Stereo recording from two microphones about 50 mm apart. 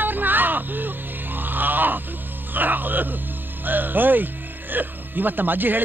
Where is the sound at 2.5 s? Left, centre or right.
Right.